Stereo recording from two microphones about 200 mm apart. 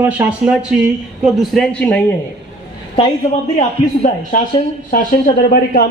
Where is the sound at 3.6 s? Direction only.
35° left (ahead or behind).